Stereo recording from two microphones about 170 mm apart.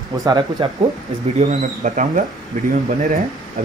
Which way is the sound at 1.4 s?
45° right (ahead or behind).